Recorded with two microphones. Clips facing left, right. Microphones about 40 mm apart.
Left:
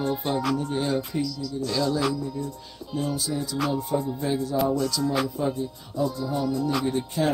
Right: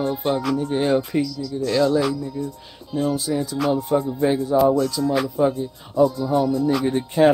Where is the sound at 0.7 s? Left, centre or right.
Right.